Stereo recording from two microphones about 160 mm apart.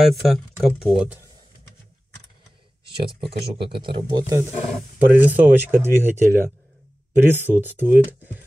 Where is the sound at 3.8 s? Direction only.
30° right (ahead or behind).